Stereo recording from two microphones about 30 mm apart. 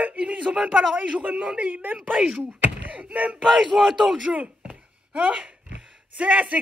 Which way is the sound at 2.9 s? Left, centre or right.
Right.